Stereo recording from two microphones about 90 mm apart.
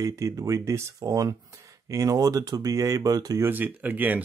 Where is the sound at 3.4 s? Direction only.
20° right (ahead or behind).